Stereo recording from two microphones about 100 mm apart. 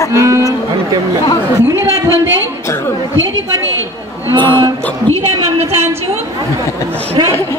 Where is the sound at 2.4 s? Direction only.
30° left (ahead or behind).